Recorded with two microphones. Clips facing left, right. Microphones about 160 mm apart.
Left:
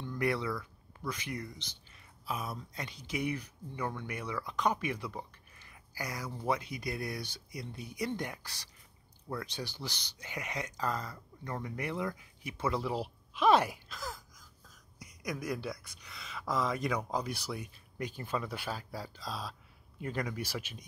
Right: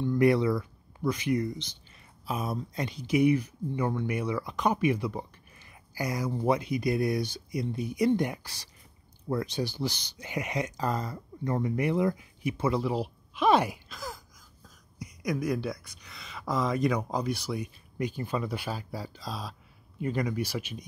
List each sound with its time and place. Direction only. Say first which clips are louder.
0.0 s a sound: right 10 dB; 20° right (ahead or behind)
0.6 s speech: right 10 dB; 15° right (ahead or behind)
5.7 s a sound: right 8 dB; 15° right (ahead or behind)
6.4 s speech: right 7 dB; 20° right (ahead or behind)
12.8 s speech: right 5 dB; centre (ahead or behind)
15.2 s speech: right 7 dB; centre (ahead or behind)
17.5 s speech: right 6 dB; 10° right (ahead or behind)